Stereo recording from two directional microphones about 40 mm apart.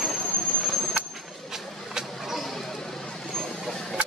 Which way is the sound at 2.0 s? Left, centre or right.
Centre.